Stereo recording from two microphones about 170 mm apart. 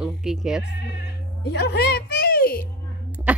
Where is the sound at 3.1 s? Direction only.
10° right (ahead or behind).